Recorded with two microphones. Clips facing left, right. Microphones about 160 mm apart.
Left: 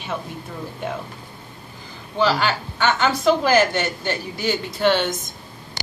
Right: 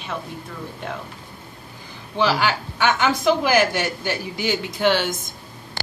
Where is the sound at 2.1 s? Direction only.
15° right (ahead or behind).